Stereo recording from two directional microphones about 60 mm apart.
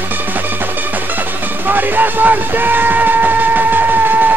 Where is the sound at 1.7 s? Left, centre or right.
Right.